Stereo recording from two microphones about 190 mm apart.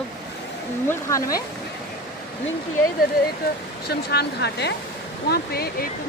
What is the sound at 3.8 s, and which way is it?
Speech, 60° left (ahead or behind).